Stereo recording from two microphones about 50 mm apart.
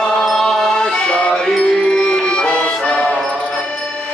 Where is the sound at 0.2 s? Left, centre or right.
Centre.